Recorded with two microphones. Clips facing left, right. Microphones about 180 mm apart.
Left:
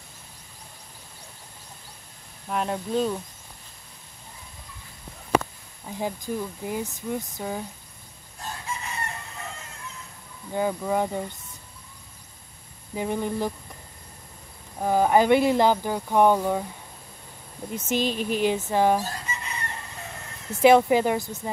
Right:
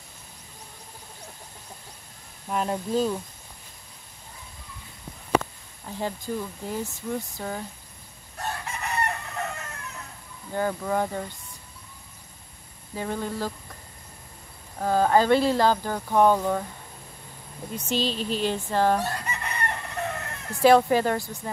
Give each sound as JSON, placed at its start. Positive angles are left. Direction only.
{"t": 2.4, "sound": "speech", "side_deg": 0}
{"t": 5.9, "sound": "speech", "side_deg": 10}
{"t": 8.4, "sound": "chicken", "side_deg": -65}
{"t": 10.5, "sound": "speech", "side_deg": 10}
{"t": 12.9, "sound": "speech", "side_deg": 15}
{"t": 14.8, "sound": "speech", "side_deg": 15}
{"t": 17.9, "sound": "speech", "side_deg": 15}
{"t": 18.9, "sound": "chicken", "side_deg": -65}
{"t": 20.6, "sound": "speech", "side_deg": 15}